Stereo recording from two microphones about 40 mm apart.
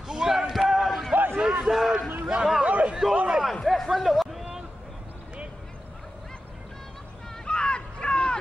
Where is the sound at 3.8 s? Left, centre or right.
Centre.